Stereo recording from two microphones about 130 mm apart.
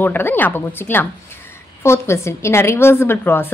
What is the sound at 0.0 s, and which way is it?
A woman's voice, 15° left (ahead or behind).